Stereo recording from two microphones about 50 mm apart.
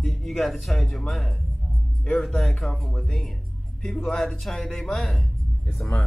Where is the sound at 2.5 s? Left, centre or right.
Centre.